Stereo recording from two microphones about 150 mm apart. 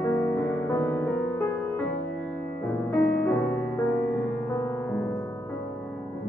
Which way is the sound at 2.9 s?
20° left (ahead or behind).